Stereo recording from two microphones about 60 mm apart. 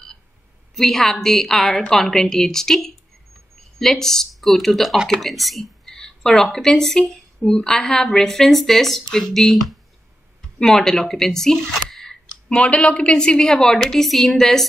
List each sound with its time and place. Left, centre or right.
0.7 s a woman's voice: centre